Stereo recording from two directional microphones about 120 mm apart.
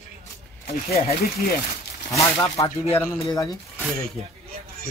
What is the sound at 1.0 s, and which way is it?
Speech, 90° left.